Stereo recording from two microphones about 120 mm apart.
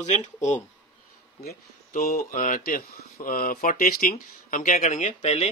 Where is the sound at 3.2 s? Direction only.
90° left; by 5.5 s 65° left (ahead or behind).